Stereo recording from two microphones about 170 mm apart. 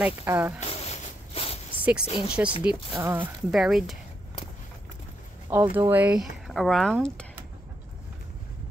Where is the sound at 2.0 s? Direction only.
35° left (ahead or behind).